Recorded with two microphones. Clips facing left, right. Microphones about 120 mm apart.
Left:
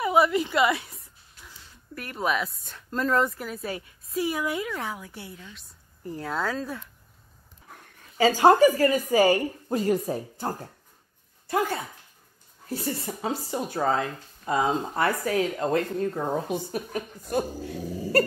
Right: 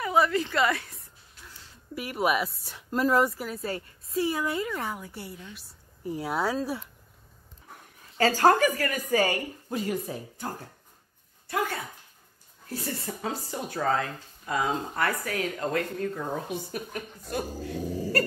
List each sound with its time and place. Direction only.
0.0 s a woman's voice: 15° left (ahead or behind)
2.0 s speech: 10° right (ahead or behind)
3.6 s a woman's voice: 10° left (ahead or behind); by 6.9 s 10° right (ahead or behind)
8.2 s speech: 15° left (ahead or behind)
8.5 s a woman's voice: 30° left (ahead or behind)
12.6 s speech: 15° left (ahead or behind)